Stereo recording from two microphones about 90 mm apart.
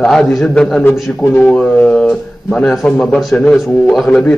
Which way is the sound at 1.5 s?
5° left (ahead or behind).